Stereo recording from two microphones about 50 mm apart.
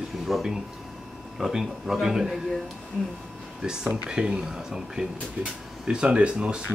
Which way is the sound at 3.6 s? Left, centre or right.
Centre.